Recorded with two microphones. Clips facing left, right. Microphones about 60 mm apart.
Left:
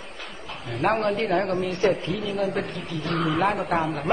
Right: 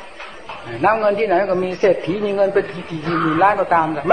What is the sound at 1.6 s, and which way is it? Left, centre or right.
A man's voice, right.